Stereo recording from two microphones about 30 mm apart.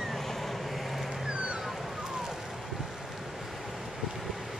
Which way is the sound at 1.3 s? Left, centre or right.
Right.